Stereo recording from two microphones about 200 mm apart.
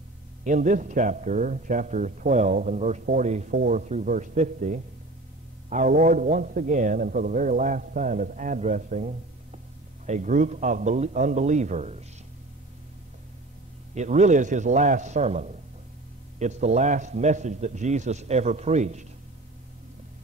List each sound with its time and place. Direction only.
0.4 s speech: 40° right (ahead or behind)
13.9 s speech: 35° right (ahead or behind)